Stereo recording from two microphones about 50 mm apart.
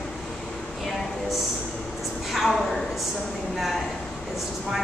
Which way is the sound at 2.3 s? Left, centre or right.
Centre.